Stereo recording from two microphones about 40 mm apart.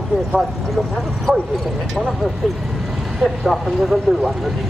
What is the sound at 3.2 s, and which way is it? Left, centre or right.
Speech, centre.